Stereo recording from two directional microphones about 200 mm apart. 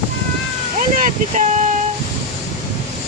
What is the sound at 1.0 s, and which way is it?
Speech, 40° right (ahead or behind).